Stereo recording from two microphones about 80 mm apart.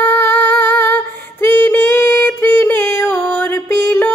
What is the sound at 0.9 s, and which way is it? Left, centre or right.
Female singing, left.